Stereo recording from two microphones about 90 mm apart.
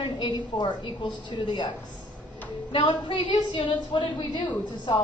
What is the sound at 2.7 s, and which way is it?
A woman's voice, 60° left (ahead or behind).